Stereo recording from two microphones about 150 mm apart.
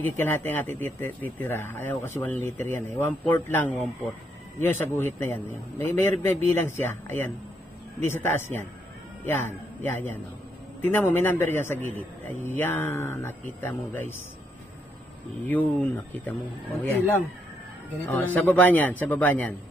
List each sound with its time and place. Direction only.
0.0 s a man's voice: 15° left (ahead or behind)
15.4 s a man's voice: 10° left (ahead or behind)
18.0 s a man's voice: 10° left (ahead or behind)